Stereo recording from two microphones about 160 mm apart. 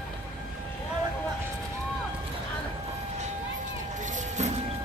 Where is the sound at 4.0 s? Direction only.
50° right (ahead or behind).